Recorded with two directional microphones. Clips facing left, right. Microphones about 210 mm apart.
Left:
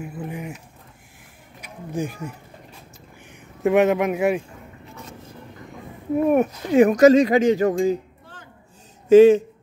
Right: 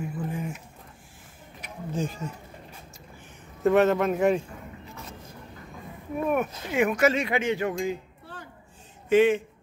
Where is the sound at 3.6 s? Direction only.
15° left (ahead or behind).